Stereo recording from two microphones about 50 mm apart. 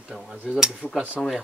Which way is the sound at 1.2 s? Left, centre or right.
Centre.